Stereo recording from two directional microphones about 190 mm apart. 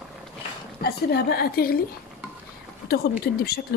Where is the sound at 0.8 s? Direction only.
55° left (ahead or behind).